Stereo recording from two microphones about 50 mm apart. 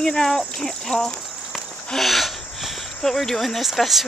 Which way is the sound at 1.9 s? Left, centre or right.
Centre.